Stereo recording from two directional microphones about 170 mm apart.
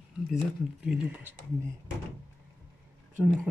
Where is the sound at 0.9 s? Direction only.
Centre (ahead or behind).